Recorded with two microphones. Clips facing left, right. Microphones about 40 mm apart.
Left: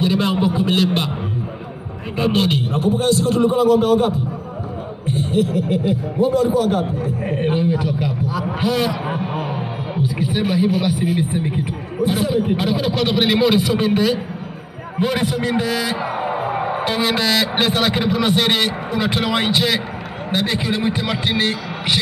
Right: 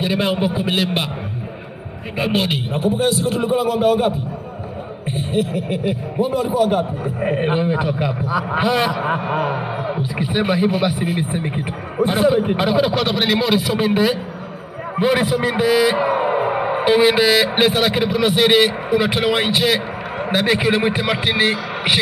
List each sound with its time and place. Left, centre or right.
0.0 s a sound: centre
2.1 s a man's voice: centre
7.2 s speech: right
9.0 s a man's voice: centre
10.0 s a man's voice: centre
20.7 s a man's voice: right